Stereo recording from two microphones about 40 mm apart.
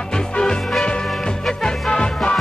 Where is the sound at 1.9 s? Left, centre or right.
Centre.